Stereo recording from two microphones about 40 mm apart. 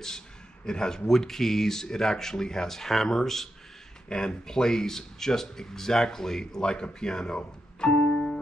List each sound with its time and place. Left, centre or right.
0.7 s speech: centre